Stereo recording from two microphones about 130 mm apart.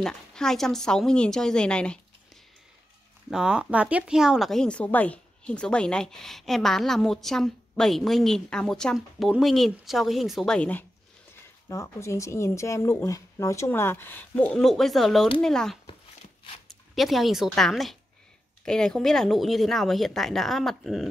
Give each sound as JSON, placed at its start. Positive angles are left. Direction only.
{"t": 0.0, "sound": "speech", "side_deg": 5}
{"t": 3.3, "sound": "speech", "side_deg": -5}
{"t": 11.7, "sound": "speech", "side_deg": 25}